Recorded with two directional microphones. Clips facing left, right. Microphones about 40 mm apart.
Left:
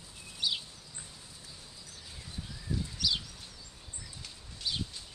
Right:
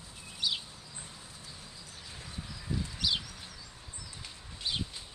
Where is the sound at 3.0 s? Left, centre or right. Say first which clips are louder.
Right 1 dB; right.